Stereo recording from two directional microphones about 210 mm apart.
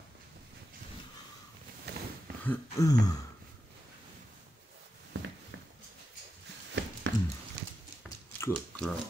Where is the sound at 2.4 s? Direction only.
10° left (ahead or behind).